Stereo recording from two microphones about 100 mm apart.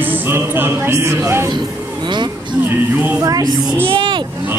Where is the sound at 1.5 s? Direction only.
50° right (ahead or behind).